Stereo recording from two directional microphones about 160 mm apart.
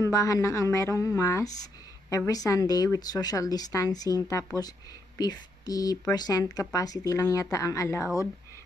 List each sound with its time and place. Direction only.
0.0 s a woman's voice: 20° left (ahead or behind)